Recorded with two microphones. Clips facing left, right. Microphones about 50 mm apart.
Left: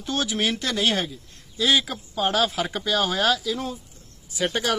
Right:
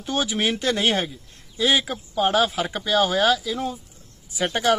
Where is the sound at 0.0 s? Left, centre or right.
Centre.